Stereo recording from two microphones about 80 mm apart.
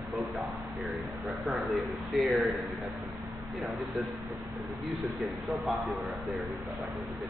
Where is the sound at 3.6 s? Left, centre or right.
Centre.